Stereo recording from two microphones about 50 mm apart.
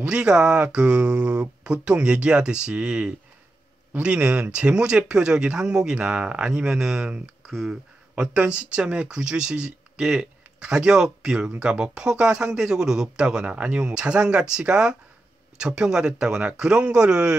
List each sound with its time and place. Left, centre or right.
0.0 s speech: centre
8.1 s speech: right